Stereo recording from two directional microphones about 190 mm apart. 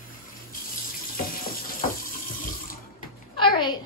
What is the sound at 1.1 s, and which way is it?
Frying, 50° left (ahead or behind).